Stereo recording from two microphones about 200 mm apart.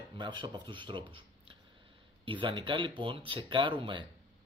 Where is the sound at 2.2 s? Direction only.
25° right (ahead or behind).